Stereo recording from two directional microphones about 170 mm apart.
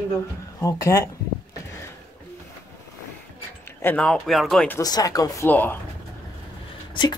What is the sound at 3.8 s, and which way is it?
Speech, 5° left (ahead or behind).